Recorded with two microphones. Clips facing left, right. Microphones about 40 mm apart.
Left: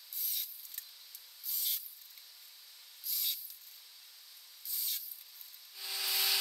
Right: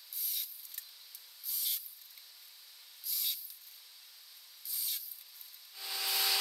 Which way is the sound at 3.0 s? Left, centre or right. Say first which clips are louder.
Even; centre.